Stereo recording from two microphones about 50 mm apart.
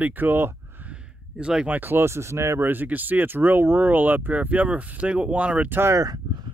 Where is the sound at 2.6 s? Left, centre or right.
Right.